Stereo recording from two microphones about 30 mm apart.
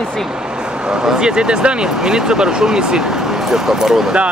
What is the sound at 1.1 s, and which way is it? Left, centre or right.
Speech, right.